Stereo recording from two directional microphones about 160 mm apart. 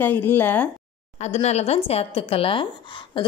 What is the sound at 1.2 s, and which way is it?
A woman's voice, 45° left (ahead or behind).